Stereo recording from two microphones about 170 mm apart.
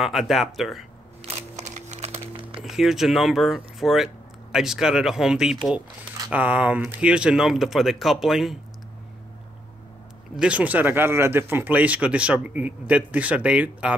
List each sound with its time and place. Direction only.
0.0 s speech: centre (ahead or behind)
1.2 s a sound: 40° right (ahead or behind)
2.6 s speech: centre (ahead or behind)
10.3 s speech: 5° right (ahead or behind)